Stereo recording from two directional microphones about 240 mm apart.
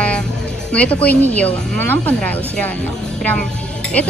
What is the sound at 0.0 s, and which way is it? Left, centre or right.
Speech, centre.